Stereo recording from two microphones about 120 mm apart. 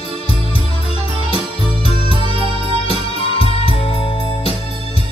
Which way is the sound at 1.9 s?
45° right (ahead or behind).